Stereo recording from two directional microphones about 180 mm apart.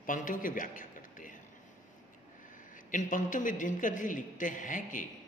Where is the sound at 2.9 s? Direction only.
45° left (ahead or behind).